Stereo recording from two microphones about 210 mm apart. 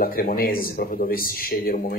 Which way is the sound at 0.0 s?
45° left (ahead or behind).